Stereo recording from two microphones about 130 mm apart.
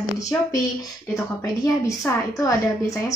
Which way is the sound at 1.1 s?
25° left (ahead or behind).